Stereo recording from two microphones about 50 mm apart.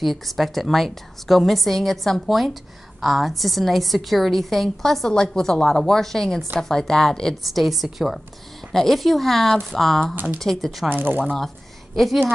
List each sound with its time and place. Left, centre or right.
0.0 s a woman's voice: centre
7.4 s a woman's voice: centre
10.9 s speech: right
11.2 s a woman's voice: centre